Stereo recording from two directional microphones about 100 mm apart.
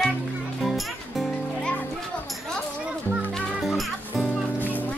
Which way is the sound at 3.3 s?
Centre (ahead or behind).